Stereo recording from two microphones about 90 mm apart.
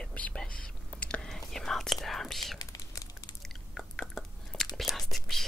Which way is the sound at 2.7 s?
40° left (ahead or behind).